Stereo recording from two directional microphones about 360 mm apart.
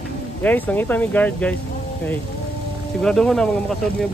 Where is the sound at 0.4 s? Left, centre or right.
Centre.